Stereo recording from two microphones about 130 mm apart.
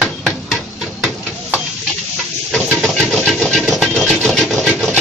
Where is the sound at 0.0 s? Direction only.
Centre (ahead or behind).